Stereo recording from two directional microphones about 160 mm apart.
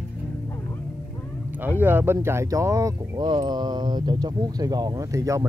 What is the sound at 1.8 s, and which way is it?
Speech, 10° right (ahead or behind).